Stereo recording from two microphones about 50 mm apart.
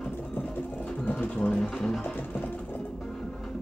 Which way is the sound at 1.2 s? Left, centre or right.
Left.